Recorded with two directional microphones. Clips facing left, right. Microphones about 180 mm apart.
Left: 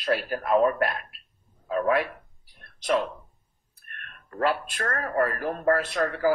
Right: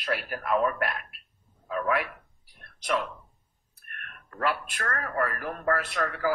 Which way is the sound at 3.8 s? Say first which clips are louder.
Right 1 dB; 30° left (ahead or behind).